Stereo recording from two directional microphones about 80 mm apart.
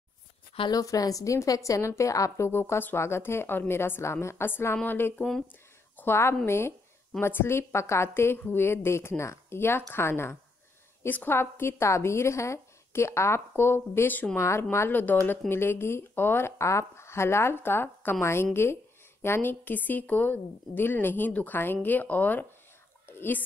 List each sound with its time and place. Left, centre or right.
0.7 s a woman's voice: left
23.0 s whispering: left